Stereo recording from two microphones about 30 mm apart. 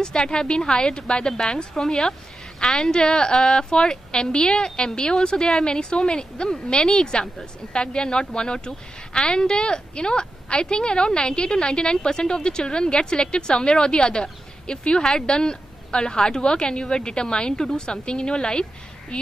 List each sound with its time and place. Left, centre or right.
0.0 s a woman's voice: left